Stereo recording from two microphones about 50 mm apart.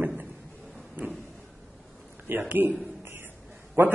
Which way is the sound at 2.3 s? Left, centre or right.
Right.